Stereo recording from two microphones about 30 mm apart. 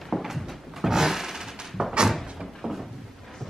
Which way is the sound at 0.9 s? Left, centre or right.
Centre.